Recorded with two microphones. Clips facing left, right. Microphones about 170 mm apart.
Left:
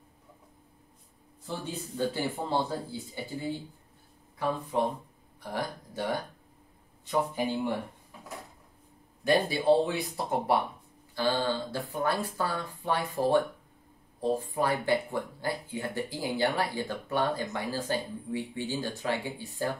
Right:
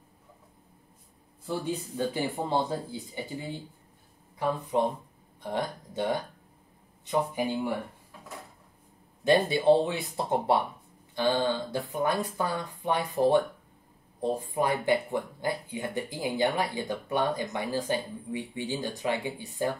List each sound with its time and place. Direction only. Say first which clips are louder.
1.5 s speech: right 5 dB; 15° right (ahead or behind)
4.4 s speech: right 2 dB; 20° right (ahead or behind)
9.2 s speech: right 3 dB; 20° right (ahead or behind)